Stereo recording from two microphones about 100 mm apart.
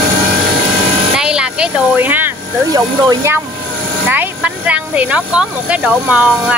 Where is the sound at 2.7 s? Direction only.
40° right (ahead or behind).